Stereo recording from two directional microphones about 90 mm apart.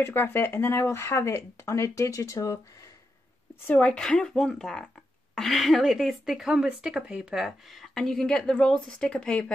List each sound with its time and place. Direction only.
0.0 s speech: 25° left (ahead or behind)
3.6 s a woman's voice: 15° left (ahead or behind)